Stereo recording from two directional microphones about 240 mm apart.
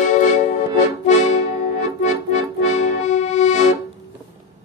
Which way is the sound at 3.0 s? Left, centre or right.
Left.